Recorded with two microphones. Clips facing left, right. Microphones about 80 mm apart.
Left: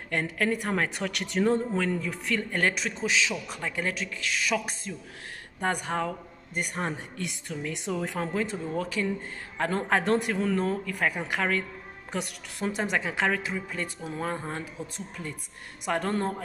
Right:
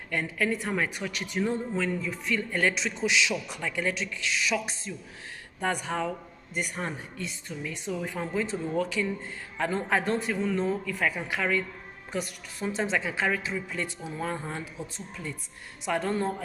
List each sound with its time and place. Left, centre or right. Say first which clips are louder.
0.1 s a woman's voice: left 1 dB; left
1.8 s speech: left 1 dB; left
2.6 s a woman's voice: right 1 dB; left
7.2 s speech: left 2 dB; left
9.7 s speech: left 2 dB; left
12.1 s a woman's voice: even; left
15.0 s a woman's voice: even; left